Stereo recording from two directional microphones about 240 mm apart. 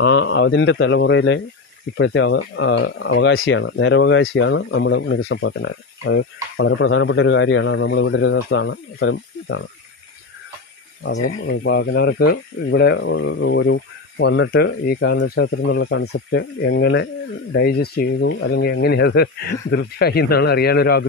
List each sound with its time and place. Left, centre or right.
0.0 s a man's voice: left
11.2 s speech: left